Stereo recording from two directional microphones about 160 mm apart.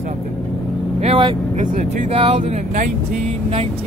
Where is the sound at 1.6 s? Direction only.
50° right (ahead or behind).